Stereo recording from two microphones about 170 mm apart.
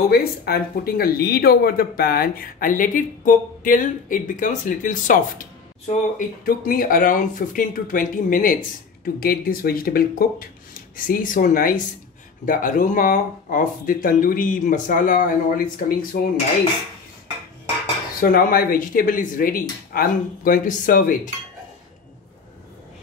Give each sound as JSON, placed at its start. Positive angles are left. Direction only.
{"t": 0.1, "sound": "speech", "side_deg": 65}
{"t": 18.3, "sound": "speech", "side_deg": 60}